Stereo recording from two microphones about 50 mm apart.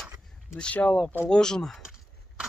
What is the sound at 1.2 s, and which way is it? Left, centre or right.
Speech, centre.